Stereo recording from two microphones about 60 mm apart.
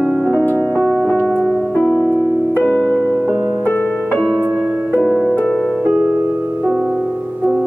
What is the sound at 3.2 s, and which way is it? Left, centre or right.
Music, right.